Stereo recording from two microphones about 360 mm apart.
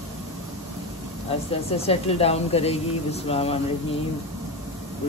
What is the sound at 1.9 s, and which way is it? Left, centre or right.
Speech, centre.